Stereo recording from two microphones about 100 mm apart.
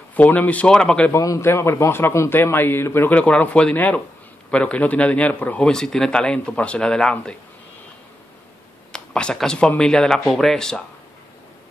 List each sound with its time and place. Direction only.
0.1 s a man's voice: 15° left (ahead or behind)
1.1 s a man's voice: 30° left (ahead or behind); by 7.3 s 5° left (ahead or behind)
8.9 s a man's voice: 10° left (ahead or behind)